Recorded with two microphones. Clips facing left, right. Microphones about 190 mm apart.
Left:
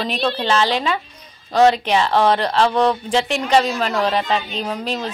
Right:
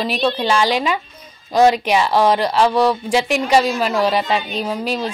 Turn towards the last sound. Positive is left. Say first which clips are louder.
# right 3 dB
turn(degrees=-10)  # may be behind; listen again after turning